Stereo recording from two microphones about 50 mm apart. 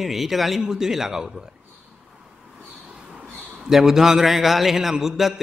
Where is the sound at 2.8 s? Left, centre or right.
Centre.